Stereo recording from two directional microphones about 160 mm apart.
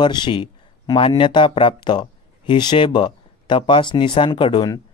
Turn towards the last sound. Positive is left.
turn(degrees=30)  # may be behind; listen again after turning